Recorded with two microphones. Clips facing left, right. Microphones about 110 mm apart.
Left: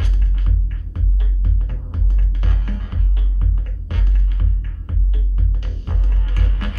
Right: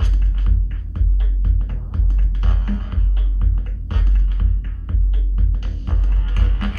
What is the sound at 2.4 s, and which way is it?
Music, 30° right (ahead or behind).